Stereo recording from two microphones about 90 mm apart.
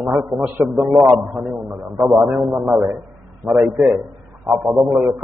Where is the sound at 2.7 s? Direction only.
10° right (ahead or behind).